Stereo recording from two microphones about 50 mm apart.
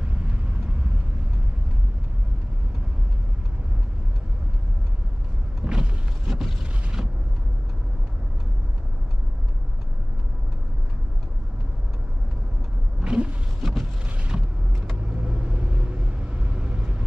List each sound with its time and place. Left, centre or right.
5.6 s vehicle: centre
6.6 s a sound: centre
13.0 s vehicle: right
13.6 s vehicle: centre
15.0 s vehicle: right